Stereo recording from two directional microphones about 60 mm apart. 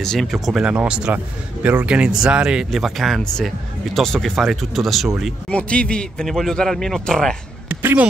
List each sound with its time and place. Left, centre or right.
0.0 s speech: centre
0.5 s speech: centre
2.7 s speech: centre
5.5 s speech: centre
7.6 s a sound: right